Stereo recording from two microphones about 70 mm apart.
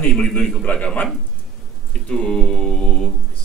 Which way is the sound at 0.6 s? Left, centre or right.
Centre.